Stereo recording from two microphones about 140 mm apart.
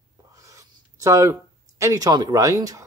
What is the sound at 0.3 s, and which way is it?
Writing, 25° right (ahead or behind).